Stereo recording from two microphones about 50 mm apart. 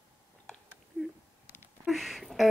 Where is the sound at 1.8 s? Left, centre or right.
Centre.